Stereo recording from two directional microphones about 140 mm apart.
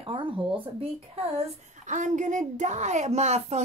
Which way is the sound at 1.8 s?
65° right (ahead or behind).